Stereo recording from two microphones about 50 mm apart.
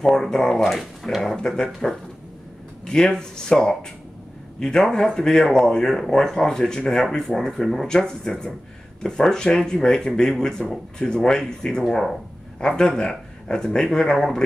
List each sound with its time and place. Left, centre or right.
0.0 s speech: centre
1.8 s speech: centre
12.5 s speech: centre